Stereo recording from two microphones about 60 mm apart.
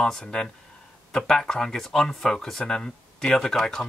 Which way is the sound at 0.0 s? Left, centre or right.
Centre.